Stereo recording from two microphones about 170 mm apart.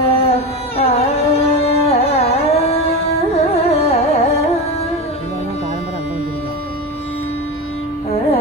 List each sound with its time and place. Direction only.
0.1 s music: 35° left (ahead or behind)
3.3 s carnatic music: 35° left (ahead or behind)